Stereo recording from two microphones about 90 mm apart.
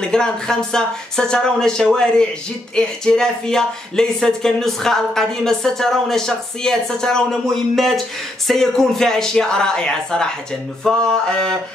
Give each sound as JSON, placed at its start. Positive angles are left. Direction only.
{"t": 0.0, "sound": "speech", "side_deg": 10}